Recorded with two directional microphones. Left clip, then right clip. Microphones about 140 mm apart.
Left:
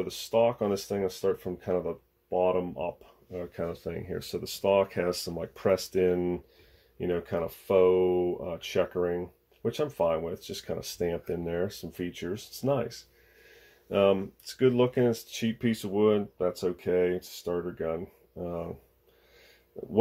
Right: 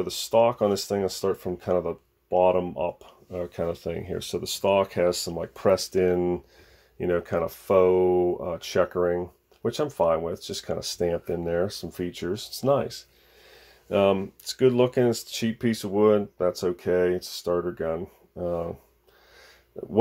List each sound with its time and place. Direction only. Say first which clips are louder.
0.0 s speech: right 4 dB; 40° right (ahead or behind)
19.7 s speech: right 4 dB; 25° right (ahead or behind)